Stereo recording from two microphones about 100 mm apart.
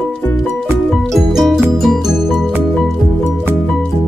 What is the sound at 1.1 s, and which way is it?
Music, centre (ahead or behind).